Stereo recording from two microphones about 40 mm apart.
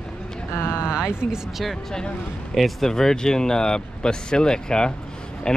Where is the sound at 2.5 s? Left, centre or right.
Centre.